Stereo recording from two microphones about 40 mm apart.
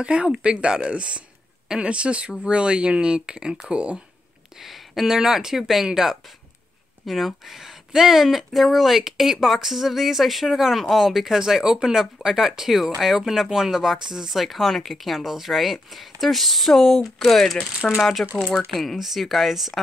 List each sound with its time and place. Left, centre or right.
0.0 s speech: right
4.6 s speech: centre
18.2 s speech: left
18.7 s speech: centre